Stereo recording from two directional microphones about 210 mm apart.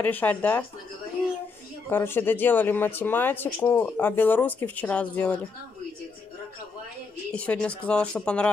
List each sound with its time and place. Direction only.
0.0 s speech: 10° left (ahead or behind)
1.9 s speech: 10° left (ahead or behind)
7.3 s speech: 5° left (ahead or behind)